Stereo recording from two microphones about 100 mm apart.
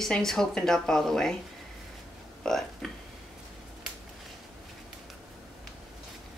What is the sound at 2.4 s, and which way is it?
Speech, 5° left (ahead or behind).